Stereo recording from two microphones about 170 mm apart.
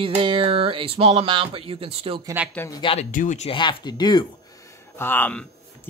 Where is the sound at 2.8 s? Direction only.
35° left (ahead or behind).